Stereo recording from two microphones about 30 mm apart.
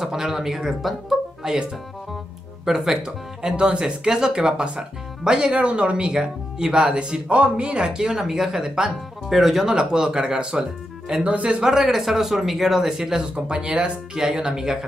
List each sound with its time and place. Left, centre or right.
0.0 s speech: centre
1.4 s speech: right
2.6 s speech: centre
3.0 s speech: right
5.5 s speech: right
6.9 s speech: right
7.6 s speech: right
9.3 s speech: centre
9.8 s speech: right
11.6 s speech: centre
12.8 s speech: centre
13.3 s speech: right
14.1 s speech: right